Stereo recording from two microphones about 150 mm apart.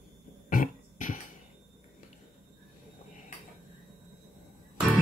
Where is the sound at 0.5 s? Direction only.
65° left (ahead or behind).